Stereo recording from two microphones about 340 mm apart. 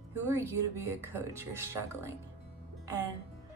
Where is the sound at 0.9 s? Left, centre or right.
Centre.